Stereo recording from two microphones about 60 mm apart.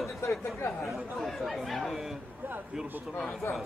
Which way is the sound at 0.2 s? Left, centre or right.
Left.